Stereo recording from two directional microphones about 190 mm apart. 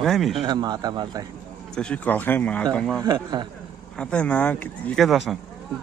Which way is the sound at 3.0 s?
25° right (ahead or behind).